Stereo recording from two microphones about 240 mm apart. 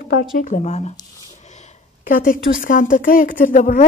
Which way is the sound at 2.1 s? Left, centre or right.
Left.